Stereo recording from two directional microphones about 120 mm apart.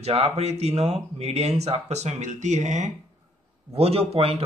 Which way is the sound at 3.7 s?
55° right (ahead or behind).